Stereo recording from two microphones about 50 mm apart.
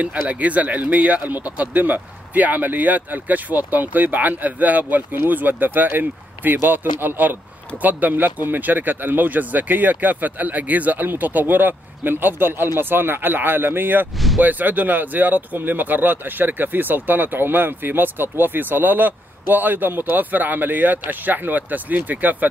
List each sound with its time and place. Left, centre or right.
0.0 s speech: right